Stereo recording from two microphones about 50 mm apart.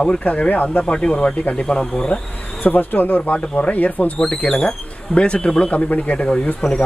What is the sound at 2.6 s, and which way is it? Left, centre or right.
Speech, left.